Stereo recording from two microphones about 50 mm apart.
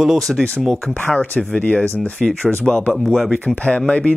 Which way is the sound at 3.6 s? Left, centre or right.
Left.